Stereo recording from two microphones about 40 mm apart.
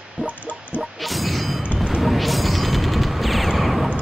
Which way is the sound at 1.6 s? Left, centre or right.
Right.